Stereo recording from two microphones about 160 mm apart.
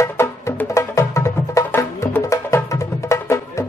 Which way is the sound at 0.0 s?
15° left (ahead or behind).